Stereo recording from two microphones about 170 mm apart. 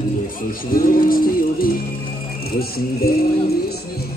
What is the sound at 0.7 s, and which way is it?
Music, 55° left (ahead or behind).